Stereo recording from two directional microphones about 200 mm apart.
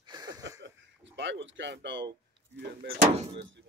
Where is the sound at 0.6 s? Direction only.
65° right (ahead or behind).